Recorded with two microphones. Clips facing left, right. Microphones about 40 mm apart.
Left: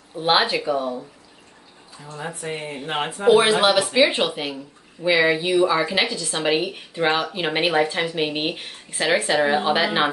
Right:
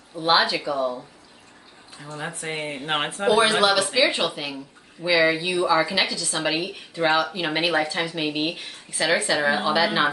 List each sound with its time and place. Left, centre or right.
0.2 s speech: left
2.1 s speech: right
3.3 s speech: left